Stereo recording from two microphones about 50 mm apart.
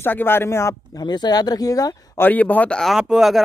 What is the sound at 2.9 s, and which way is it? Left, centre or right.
Speech, centre.